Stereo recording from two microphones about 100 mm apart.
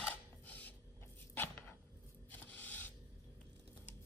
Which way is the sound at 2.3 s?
15° left (ahead or behind).